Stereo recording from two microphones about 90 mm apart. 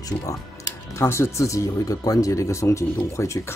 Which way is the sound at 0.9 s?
30° left (ahead or behind).